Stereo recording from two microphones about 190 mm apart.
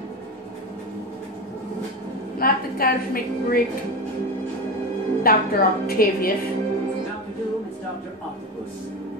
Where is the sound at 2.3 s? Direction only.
50° left (ahead or behind).